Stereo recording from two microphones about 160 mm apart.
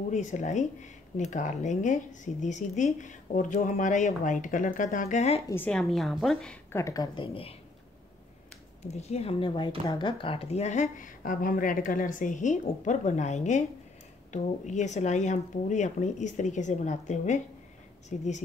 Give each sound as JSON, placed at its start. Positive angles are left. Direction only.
{"t": 0.1, "sound": "speech", "side_deg": 50}
{"t": 5.5, "sound": "a woman's voice", "side_deg": 10}
{"t": 6.7, "sound": "speech", "side_deg": 20}
{"t": 8.8, "sound": "speech", "side_deg": 40}